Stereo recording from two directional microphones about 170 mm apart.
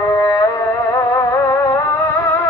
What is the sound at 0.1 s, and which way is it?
Music, 15° left (ahead or behind).